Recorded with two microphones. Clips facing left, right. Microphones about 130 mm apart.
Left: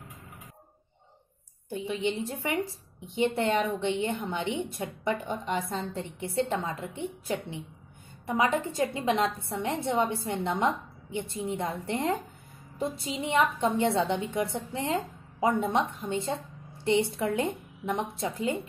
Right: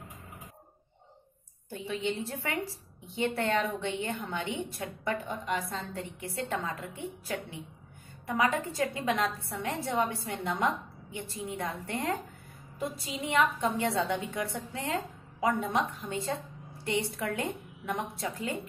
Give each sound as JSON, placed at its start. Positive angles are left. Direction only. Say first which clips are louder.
{"t": 1.7, "sound": "a woman's voice", "louder": "left 3 dB", "side_deg": 15}